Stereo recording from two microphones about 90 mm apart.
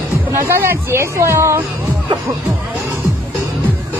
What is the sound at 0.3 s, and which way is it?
Speech, 30° right (ahead or behind).